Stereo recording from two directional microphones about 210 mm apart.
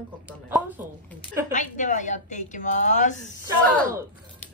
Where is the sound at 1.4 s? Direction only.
35° left (ahead or behind).